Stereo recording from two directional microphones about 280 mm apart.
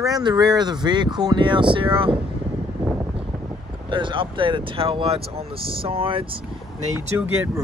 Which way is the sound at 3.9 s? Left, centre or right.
Centre.